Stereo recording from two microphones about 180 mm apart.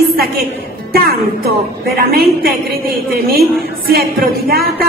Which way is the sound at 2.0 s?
55° right (ahead or behind).